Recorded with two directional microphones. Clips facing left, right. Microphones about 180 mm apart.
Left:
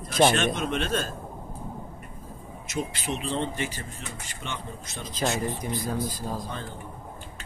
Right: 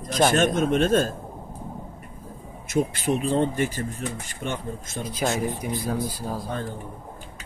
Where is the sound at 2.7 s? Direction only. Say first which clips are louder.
Right 8 dB; 55° right (ahead or behind).